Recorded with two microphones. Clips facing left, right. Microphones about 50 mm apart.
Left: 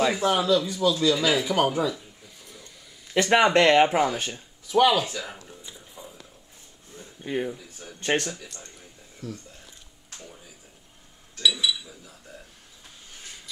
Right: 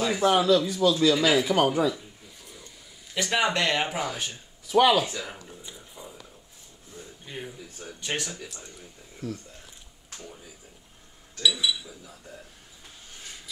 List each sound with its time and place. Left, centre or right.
0.2 s a man's voice: centre
2.4 s a sound: centre
3.2 s speech: left
4.6 s a man's voice: centre
5.7 s a sound: centre
7.2 s speech: left
8.0 s speech: left
9.2 s a man's voice: centre
11.4 s chink: centre